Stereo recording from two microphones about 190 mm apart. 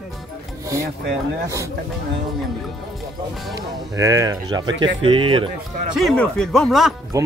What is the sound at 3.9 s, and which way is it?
Speech, 15° right (ahead or behind).